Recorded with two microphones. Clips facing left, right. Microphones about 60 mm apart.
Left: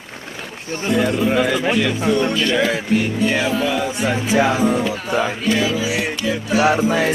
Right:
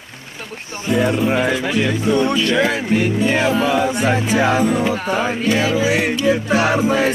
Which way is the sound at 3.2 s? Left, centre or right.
Right.